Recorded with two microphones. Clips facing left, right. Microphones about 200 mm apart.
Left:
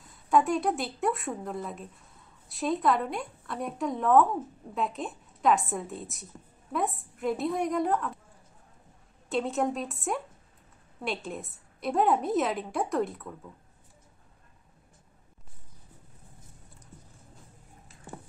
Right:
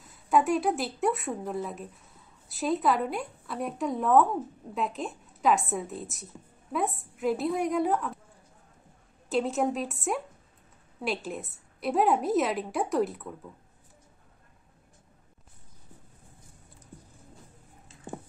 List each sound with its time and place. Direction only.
0.0 s a woman's voice: centre (ahead or behind)
9.3 s a woman's voice: centre (ahead or behind)
17.8 s a sound: 20° right (ahead or behind)